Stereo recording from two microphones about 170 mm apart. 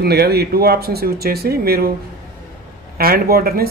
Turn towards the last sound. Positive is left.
turn(degrees=-65)  # may be behind; listen again after turning